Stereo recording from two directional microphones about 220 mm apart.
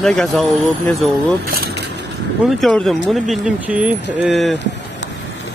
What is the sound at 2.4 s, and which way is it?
Speech, centre (ahead or behind).